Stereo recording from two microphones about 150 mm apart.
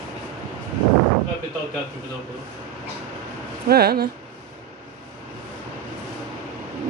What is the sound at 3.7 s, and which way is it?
Speech, 90° right.